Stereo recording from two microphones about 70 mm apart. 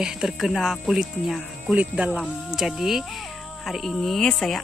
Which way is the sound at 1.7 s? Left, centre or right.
Centre.